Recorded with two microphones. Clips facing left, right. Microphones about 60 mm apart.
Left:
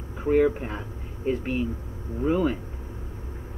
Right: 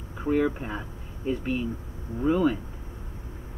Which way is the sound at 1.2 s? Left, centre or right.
Left.